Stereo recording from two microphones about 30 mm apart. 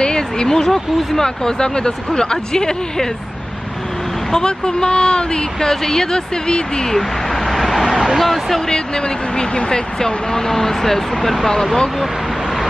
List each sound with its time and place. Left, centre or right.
0.0 s a sound: left
0.5 s speech: centre
4.3 s speech: left
5.7 s speech: centre
6.9 s a sound: centre
8.2 s speech: centre
8.6 s speech: left